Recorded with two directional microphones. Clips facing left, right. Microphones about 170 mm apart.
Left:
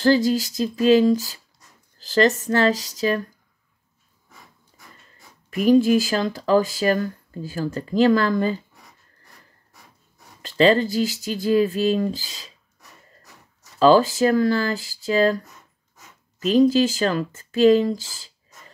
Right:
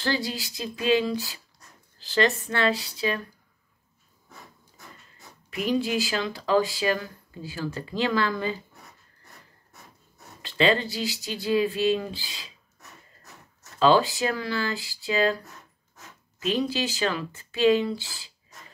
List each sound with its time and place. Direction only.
0.0 s speech: 45° left (ahead or behind)
5.5 s speech: 45° left (ahead or behind)
10.4 s speech: 40° left (ahead or behind)
13.7 s speech: 45° left (ahead or behind)
16.4 s speech: 45° left (ahead or behind)